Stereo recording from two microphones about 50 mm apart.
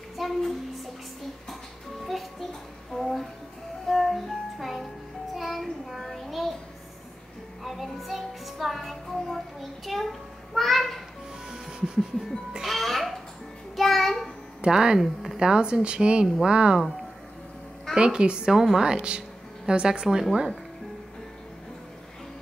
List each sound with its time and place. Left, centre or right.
0.2 s a sound: centre
2.9 s a sound: centre
3.8 s music: centre
5.3 s child singing: centre
7.6 s music: centre
11.5 s music: centre
13.7 s a sound: centre
14.6 s speech: centre
17.9 s a woman's voice: centre